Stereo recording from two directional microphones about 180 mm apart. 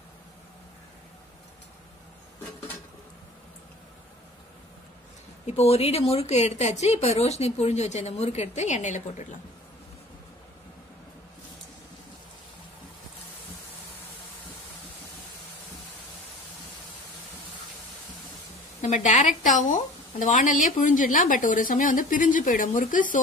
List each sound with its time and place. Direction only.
5.5 s speech: 35° left (ahead or behind)
18.8 s a woman's voice: 40° left (ahead or behind)